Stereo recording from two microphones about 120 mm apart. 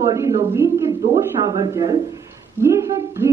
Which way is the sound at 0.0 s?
25° right (ahead or behind).